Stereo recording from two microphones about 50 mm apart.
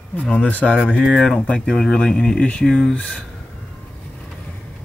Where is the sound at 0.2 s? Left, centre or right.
Left.